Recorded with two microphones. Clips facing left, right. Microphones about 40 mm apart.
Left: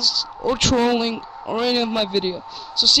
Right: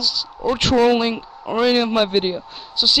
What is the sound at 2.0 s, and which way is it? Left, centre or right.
Speech, right.